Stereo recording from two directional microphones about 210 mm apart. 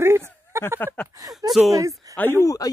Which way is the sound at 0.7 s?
10° left (ahead or behind).